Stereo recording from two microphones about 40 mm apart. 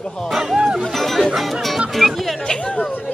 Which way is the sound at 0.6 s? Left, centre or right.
Centre.